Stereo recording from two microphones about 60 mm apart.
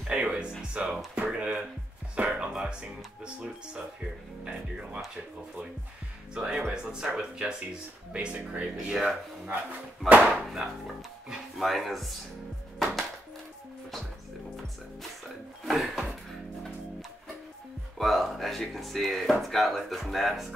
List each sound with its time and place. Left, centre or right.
0.1 s speech: centre
4.5 s speech: centre
6.3 s speech: centre
10.0 s speech: right
10.4 s speech: centre
12.7 s music: centre
15.6 s a sound: centre
17.9 s speech: centre